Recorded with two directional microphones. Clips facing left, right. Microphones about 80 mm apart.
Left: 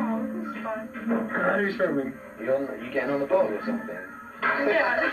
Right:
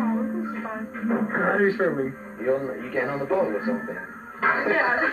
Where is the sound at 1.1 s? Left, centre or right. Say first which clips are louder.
Right 1 dB; right.